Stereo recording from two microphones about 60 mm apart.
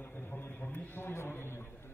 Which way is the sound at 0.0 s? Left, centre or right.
Left.